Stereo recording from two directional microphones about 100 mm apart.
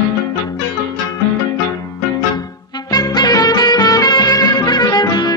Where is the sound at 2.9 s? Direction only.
40° left (ahead or behind).